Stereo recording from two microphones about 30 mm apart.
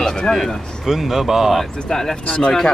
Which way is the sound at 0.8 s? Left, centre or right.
Centre.